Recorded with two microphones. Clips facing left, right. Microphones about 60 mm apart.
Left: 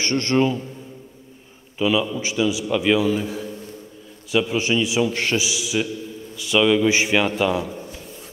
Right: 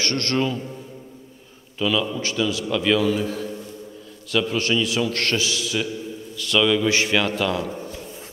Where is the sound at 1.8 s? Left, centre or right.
Centre.